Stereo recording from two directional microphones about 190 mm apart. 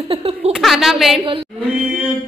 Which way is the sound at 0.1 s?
30° right (ahead or behind).